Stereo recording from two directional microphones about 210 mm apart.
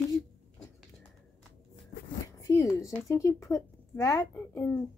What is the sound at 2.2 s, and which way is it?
Speech, 15° left (ahead or behind).